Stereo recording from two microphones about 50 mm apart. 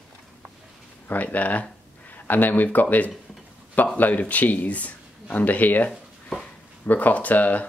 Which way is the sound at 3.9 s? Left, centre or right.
Left.